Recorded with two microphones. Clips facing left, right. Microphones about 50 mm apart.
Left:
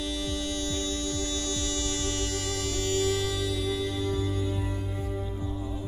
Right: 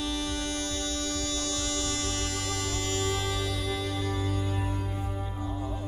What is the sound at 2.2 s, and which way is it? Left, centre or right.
Music, right.